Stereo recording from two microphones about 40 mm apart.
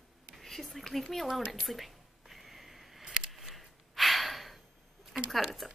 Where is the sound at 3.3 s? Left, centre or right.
Centre.